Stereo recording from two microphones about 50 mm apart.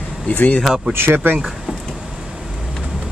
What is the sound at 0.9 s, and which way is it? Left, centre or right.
Speech, right.